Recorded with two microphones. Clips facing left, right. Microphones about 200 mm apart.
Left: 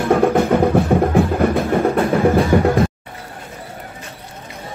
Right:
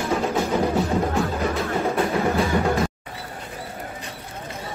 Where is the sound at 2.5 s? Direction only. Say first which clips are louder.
Left 8 dB; 55° left (ahead or behind).